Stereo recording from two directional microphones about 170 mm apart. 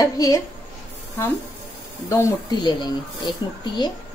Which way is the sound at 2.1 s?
20° left (ahead or behind).